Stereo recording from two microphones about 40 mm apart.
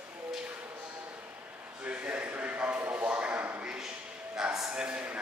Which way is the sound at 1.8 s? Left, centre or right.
Right.